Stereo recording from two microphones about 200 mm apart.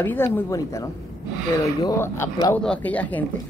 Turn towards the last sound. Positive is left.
turn(degrees=5)  # may be behind; listen again after turning